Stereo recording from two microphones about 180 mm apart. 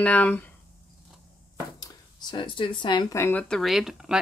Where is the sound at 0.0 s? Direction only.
10° left (ahead or behind).